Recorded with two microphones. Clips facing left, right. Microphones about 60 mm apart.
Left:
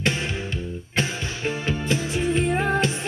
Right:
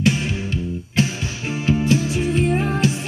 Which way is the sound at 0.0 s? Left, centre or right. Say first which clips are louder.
Right 5 dB; left.